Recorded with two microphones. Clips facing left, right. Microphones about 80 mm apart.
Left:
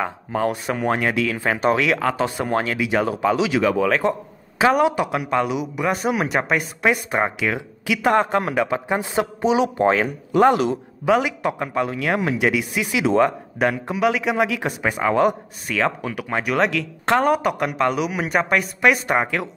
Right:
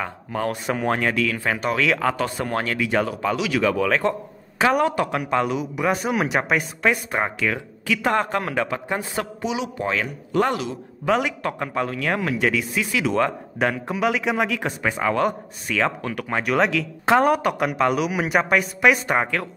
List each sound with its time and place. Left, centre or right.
0.0 s speech: centre
0.7 s speech: centre; by 1.8 s left
1.8 s speech: centre
3.3 s speech: left
3.7 s speech: centre
9.4 s speech: left
10.3 s speech: left
11.1 s speech: centre
13.6 s speech: centre
15.7 s speech: centre